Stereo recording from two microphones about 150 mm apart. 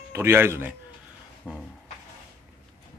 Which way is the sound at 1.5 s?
5° left (ahead or behind).